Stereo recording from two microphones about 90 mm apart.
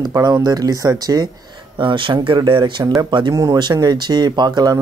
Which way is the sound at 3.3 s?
40° right (ahead or behind).